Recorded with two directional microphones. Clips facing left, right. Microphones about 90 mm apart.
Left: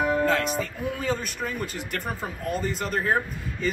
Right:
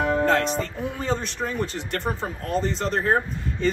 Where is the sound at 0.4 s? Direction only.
5° left (ahead or behind).